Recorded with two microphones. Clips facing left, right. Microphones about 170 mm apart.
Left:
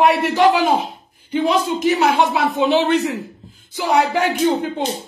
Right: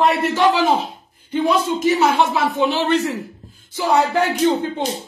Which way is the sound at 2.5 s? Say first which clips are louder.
Left 2 dB; 20° left (ahead or behind).